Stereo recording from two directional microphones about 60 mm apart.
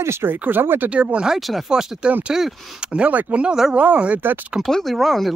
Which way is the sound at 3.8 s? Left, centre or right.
Right.